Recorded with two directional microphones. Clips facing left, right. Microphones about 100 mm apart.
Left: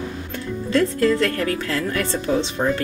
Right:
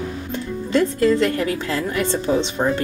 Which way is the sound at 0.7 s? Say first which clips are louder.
Right 1 dB; 20° right (ahead or behind).